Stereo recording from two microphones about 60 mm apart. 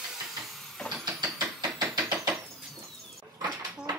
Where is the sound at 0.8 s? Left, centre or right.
Centre.